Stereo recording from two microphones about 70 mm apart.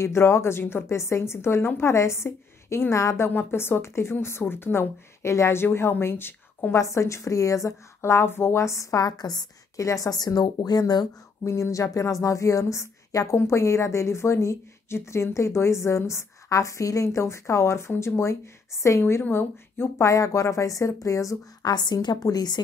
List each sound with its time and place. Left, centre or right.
0.0 s speech: left
3.3 s speech: left
6.8 s a woman's voice: left
9.0 s a woman's voice: left
9.8 s a woman's voice: left
11.4 s a woman's voice: left
21.6 s a woman's voice: left